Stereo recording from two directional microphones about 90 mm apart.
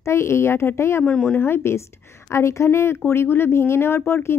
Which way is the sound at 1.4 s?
25° left (ahead or behind).